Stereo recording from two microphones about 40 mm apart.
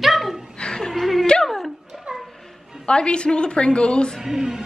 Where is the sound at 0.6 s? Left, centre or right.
Centre.